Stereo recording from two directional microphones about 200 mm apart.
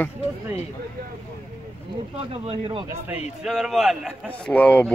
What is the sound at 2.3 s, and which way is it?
Speech, 30° right (ahead or behind).